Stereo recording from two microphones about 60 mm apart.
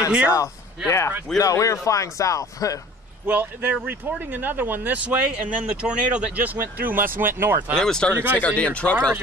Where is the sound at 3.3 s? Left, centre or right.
Right.